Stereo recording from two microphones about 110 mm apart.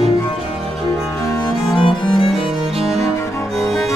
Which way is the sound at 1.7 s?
55° left (ahead or behind).